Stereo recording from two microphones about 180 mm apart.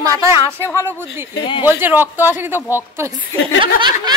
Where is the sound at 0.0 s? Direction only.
20° right (ahead or behind).